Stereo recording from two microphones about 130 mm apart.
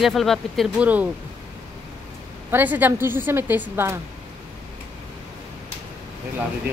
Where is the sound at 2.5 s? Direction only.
15° right (ahead or behind).